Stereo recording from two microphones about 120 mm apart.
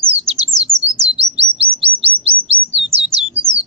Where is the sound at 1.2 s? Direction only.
55° right (ahead or behind).